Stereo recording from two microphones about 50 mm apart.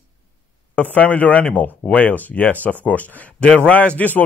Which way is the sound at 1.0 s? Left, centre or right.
Left.